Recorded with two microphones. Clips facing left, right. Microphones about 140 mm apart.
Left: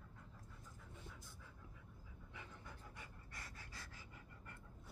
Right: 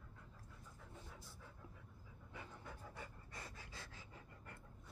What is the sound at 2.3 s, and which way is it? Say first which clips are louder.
Pant: right 3 dB; 40° right (ahead or behind).